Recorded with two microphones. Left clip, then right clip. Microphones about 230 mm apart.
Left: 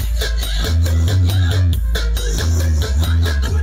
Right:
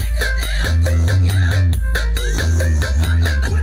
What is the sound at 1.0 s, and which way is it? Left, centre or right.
Music, centre.